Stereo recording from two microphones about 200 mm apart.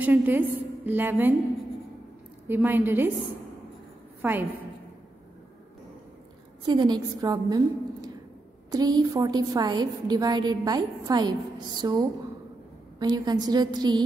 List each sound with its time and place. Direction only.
0.0 s a woman's voice: 10° right (ahead or behind)
2.4 s a woman's voice: 10° right (ahead or behind)
4.2 s a woman's voice: 10° right (ahead or behind)
6.6 s a woman's voice: 20° right (ahead or behind)